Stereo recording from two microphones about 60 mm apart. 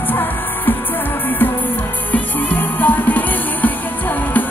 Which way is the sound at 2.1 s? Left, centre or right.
Left.